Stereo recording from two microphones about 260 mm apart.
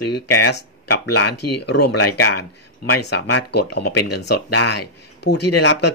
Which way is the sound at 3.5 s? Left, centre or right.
Left.